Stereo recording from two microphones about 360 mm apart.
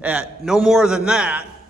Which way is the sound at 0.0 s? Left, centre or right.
Centre.